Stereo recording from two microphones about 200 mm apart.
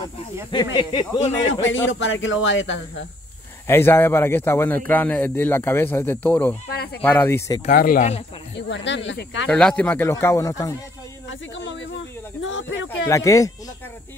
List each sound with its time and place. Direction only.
0.7 s speech: 25° left (ahead or behind)
1.5 s speech: 70° left (ahead or behind)
3.6 s a man's voice: 10° left (ahead or behind)
7.7 s speech: 45° left (ahead or behind)
8.5 s speech: 65° left (ahead or behind)
9.5 s a man's voice: 5° left (ahead or behind)
11.2 s speech: 65° left (ahead or behind)
13.1 s a man's voice: 15° left (ahead or behind)